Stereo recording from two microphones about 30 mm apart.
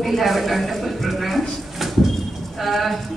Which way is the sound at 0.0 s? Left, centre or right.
Centre.